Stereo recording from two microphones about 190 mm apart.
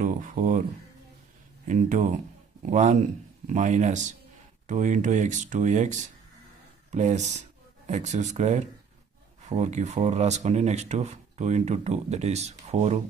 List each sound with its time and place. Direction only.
0.0 s speech: 45° right (ahead or behind)
1.7 s speech: 40° right (ahead or behind)